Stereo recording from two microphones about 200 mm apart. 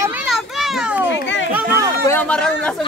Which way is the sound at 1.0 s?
65° left (ahead or behind).